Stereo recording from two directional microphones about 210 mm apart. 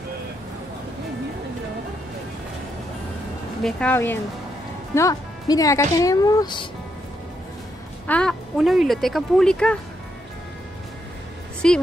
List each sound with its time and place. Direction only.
3.6 s speech: 10° left (ahead or behind)
8.1 s speech: 5° left (ahead or behind)
11.6 s speech: 5° left (ahead or behind)